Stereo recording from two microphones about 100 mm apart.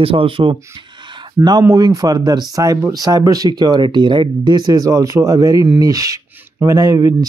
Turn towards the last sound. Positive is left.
turn(degrees=-35)  # may be behind; listen again after turning